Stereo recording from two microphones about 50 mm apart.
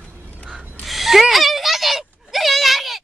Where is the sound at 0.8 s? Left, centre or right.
Centre.